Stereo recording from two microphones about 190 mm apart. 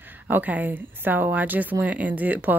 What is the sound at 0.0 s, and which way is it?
Speech, 10° right (ahead or behind).